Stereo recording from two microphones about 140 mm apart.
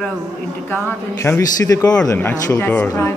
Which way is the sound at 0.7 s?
15° left (ahead or behind).